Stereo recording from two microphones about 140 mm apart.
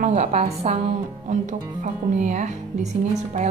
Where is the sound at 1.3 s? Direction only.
60° right (ahead or behind).